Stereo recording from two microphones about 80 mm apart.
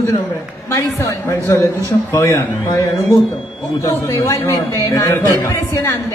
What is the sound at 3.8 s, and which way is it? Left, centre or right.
A man's voice, left.